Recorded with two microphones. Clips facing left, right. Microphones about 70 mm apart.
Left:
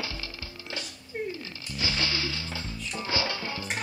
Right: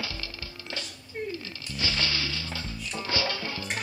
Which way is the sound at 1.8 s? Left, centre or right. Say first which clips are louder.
Even; centre.